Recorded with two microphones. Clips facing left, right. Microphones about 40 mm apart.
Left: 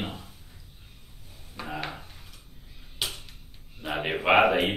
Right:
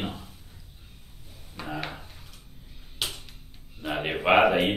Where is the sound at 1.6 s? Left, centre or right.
Centre.